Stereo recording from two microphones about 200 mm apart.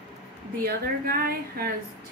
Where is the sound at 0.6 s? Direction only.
50° right (ahead or behind).